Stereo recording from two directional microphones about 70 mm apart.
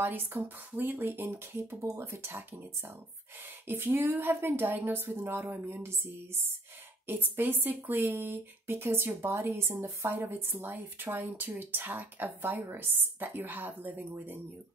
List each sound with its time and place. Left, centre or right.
0.0 s speech: right